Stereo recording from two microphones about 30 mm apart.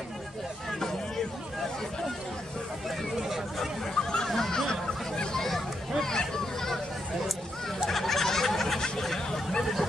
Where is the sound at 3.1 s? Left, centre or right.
Centre.